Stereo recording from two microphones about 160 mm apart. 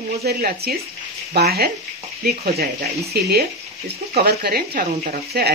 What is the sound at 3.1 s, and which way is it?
Speech, 80° right.